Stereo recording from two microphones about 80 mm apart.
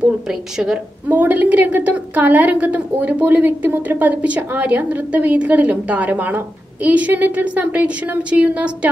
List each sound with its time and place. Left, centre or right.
0.3 s a woman's voice: centre
1.0 s a woman's voice: right